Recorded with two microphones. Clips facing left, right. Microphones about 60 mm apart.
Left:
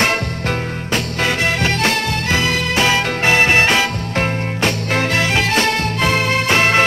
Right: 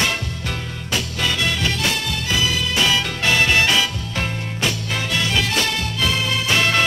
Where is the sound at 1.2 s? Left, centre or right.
Left.